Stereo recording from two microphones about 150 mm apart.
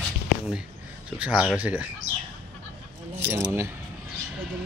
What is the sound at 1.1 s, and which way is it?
Speech, 10° right (ahead or behind).